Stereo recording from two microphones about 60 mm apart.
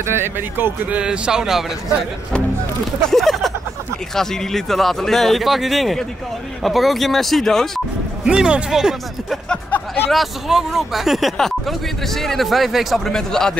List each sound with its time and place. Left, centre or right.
0.0 s speech: right
0.8 s speech: centre
3.1 s speech: centre
8.3 s speech: centre
9.7 s a sound: left
10.1 s speech: centre